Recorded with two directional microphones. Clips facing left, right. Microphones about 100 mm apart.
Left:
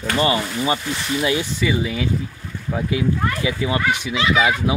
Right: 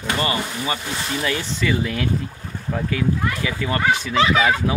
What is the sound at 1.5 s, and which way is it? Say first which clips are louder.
Speech: left 1 dB; 5° left (ahead or behind).